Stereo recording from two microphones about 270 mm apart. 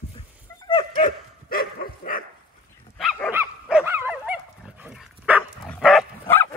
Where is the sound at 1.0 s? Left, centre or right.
Left.